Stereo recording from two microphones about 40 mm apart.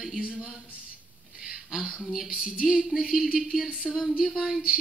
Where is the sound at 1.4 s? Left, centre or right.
Centre.